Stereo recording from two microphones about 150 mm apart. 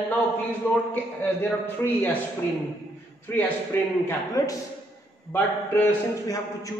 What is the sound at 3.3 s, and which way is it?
A man's voice, 15° left (ahead or behind).